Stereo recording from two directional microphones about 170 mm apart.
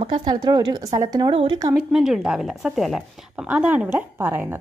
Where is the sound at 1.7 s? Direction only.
5° right (ahead or behind).